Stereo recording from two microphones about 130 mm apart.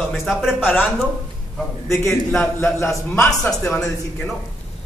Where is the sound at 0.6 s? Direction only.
15° left (ahead or behind).